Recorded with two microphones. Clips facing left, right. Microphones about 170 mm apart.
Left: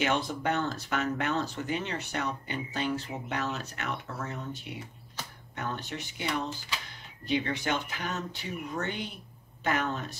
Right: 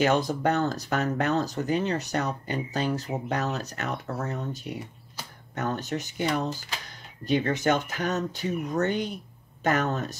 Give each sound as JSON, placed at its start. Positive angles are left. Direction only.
{"t": 0.0, "sound": "speech", "side_deg": -40}